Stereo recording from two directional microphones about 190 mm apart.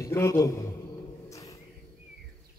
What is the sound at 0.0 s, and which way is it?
Speech, 15° left (ahead or behind).